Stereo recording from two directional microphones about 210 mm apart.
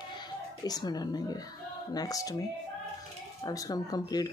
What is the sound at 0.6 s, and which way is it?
Speech, 20° left (ahead or behind).